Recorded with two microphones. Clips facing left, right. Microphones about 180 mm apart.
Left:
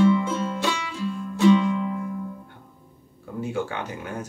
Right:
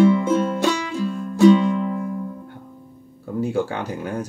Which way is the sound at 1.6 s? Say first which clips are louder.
Right 3 dB; 35° right (ahead or behind).